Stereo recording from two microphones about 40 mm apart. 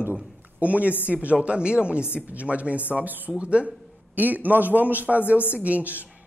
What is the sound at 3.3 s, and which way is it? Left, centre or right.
Speech, right.